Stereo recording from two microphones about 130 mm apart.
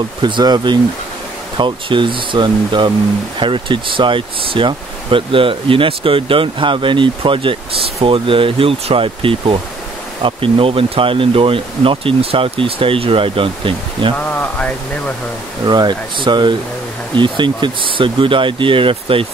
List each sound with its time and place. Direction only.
0.2 s speech: 35° right (ahead or behind)
14.1 s speech: 10° left (ahead or behind)
15.6 s speech: 35° right (ahead or behind)